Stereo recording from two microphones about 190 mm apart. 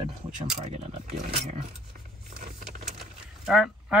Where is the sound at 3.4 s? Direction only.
5° right (ahead or behind).